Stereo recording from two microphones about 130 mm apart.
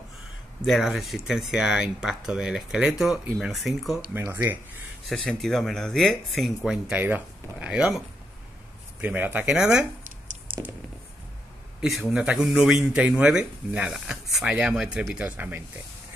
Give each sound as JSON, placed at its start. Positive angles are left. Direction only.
{"t": 0.7, "sound": "speech", "side_deg": 0}
{"t": 4.1, "sound": "speech", "side_deg": -15}
{"t": 5.0, "sound": "speech", "side_deg": 5}
{"t": 9.0, "sound": "speech", "side_deg": -15}
{"t": 12.0, "sound": "speech", "side_deg": -10}